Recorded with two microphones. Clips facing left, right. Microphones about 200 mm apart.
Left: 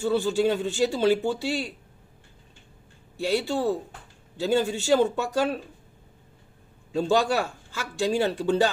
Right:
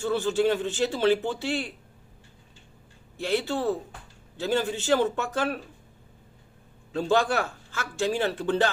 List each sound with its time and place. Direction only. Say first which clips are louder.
0.0 s a man's voice: left 1 dB; 10° left (ahead or behind)
3.3 s a man's voice: left 1 dB; 10° left (ahead or behind)
6.9 s a man's voice: left 1 dB; 10° left (ahead or behind)